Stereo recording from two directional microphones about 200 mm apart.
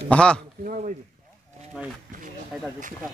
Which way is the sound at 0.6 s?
40° right (ahead or behind).